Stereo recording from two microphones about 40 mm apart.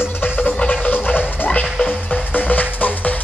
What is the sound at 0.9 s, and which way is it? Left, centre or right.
Music, left.